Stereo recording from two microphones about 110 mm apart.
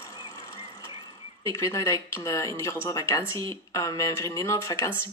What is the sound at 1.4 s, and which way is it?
Speech, 30° left (ahead or behind).